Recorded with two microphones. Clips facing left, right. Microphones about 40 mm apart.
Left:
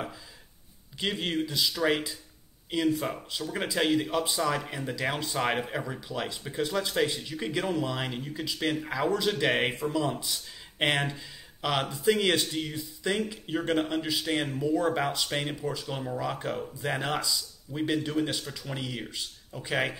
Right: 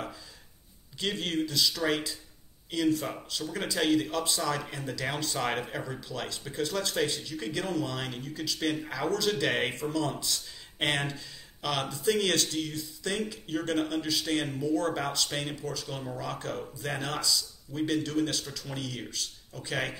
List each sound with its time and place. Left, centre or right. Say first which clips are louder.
0.9 s speech: left 1 dB; centre